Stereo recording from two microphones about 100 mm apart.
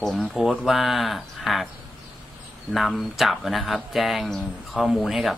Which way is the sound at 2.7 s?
Centre (ahead or behind).